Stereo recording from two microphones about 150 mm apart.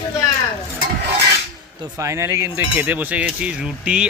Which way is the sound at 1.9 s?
20° right (ahead or behind).